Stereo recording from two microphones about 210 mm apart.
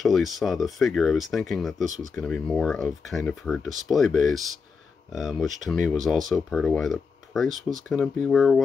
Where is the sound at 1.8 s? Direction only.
35° right (ahead or behind).